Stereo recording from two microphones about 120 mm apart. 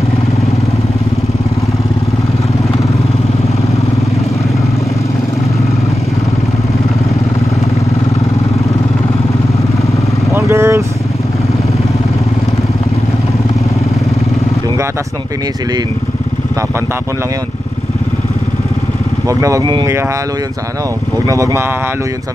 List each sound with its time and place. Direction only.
10.3 s vehicle: 20° right (ahead or behind)
19.2 s speech: 25° right (ahead or behind)
19.6 s speech: 40° right (ahead or behind)
21.3 s speech: 25° right (ahead or behind)